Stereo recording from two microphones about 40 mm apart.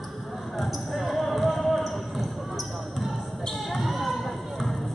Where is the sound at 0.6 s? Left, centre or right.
Centre.